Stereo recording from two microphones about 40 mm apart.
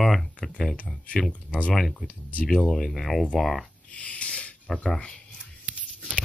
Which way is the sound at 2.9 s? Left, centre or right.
Centre.